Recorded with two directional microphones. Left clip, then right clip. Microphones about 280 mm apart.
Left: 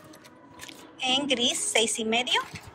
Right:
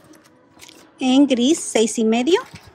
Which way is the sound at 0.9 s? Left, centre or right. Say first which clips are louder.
Right 8 dB; right.